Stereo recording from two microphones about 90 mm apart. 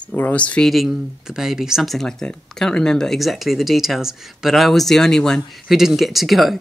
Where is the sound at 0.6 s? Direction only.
Centre (ahead or behind).